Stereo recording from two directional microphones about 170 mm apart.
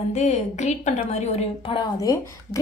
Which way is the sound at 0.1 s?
40° left (ahead or behind).